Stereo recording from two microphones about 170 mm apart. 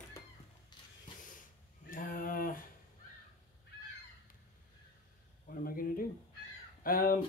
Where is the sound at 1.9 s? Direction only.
55° left (ahead or behind).